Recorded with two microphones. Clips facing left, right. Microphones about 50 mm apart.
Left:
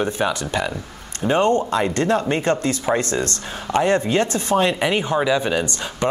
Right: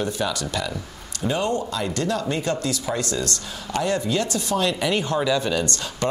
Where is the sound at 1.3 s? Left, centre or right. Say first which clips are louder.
Left 7 dB; left.